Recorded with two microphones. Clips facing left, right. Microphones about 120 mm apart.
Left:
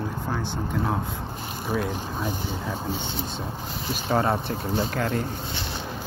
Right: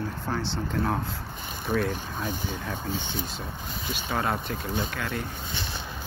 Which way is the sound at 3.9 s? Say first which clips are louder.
Left 5 dB; 40° left (ahead or behind).